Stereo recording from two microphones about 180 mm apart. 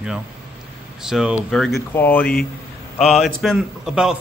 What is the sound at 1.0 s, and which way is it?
A man's voice, 5° right (ahead or behind).